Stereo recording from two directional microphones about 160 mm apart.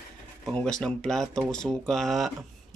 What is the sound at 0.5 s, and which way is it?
Speech, 5° left (ahead or behind).